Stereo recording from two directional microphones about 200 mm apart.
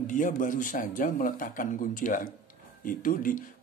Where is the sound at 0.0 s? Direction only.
40° left (ahead or behind).